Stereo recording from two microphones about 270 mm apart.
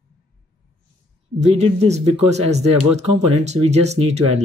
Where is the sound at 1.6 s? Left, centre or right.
Right.